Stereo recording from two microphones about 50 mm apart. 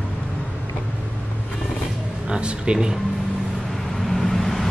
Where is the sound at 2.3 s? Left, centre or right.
Centre.